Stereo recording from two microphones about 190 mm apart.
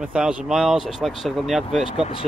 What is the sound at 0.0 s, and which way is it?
Speech, 5° right (ahead or behind).